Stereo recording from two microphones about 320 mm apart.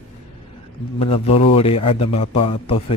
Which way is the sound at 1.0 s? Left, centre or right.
Centre.